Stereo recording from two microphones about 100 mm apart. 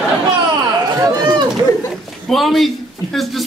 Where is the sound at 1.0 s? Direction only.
40° right (ahead or behind).